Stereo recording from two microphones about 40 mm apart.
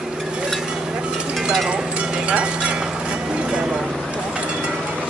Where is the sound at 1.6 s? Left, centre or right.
Right.